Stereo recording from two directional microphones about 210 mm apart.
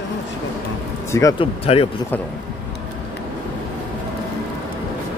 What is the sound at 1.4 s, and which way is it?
Speech, 25° left (ahead or behind).